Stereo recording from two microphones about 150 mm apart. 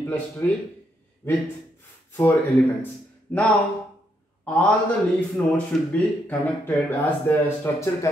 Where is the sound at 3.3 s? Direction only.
10° left (ahead or behind).